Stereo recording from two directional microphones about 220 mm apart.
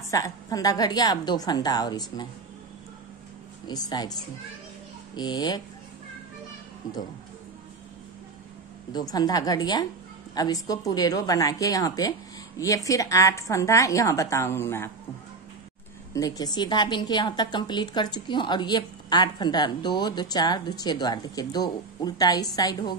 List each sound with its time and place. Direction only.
0.1 s speech: 15° left (ahead or behind)
3.6 s a woman's voice: 20° left (ahead or behind)
5.1 s a woman's voice: 20° left (ahead or behind)
8.9 s speech: 20° left (ahead or behind)
16.1 s a woman's voice: 15° left (ahead or behind)